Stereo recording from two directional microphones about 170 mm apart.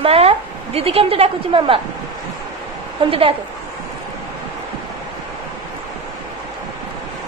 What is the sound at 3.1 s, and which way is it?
Speech, 30° right (ahead or behind).